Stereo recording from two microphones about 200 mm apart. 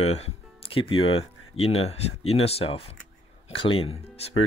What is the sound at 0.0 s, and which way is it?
Speech, 30° left (ahead or behind).